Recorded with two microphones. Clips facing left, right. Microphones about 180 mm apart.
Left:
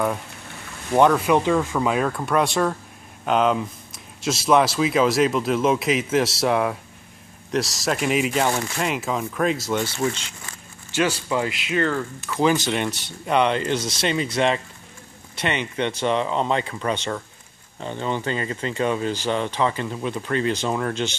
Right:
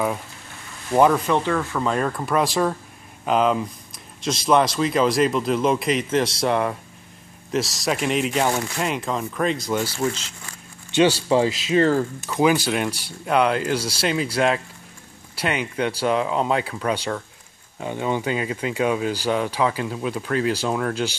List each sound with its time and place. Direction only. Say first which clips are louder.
0.9 s speech: even; centre (ahead or behind)
1.2 s speech: left 3 dB; 15° left (ahead or behind)
2.0 s speech: even; centre (ahead or behind)
11.0 s speech: right 5 dB; 30° right (ahead or behind)
12.3 s speech: even; 10° right (ahead or behind)
13.7 s speech: right 1 dB; 30° right (ahead or behind)
14.0 s speech: right 1 dB; 5° right (ahead or behind)